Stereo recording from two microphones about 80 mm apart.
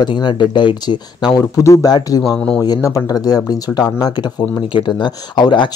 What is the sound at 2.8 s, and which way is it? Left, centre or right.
Speech, left.